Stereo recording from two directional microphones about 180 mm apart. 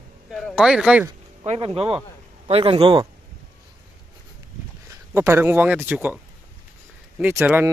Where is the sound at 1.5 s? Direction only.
30° right (ahead or behind).